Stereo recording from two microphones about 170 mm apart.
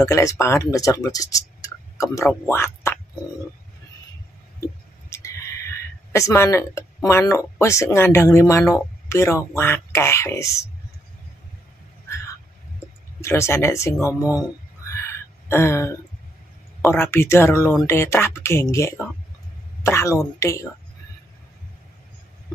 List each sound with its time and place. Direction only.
0.0 s speech: 20° left (ahead or behind)
6.1 s speech: 15° left (ahead or behind)
13.2 s speech: 15° left (ahead or behind)
14.9 s a sound: 15° left (ahead or behind)
16.9 s speech: 15° left (ahead or behind)